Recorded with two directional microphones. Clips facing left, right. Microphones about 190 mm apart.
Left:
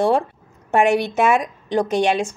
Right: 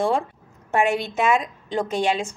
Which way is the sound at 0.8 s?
75° left (ahead or behind).